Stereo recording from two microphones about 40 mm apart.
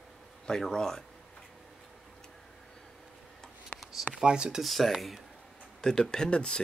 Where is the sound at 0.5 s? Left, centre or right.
Centre.